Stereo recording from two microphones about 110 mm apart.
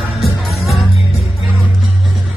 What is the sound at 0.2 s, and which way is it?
Music, centre (ahead or behind).